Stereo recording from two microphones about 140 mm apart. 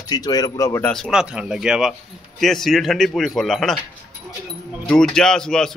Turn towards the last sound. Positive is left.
turn(degrees=5)  # may be behind; listen again after turning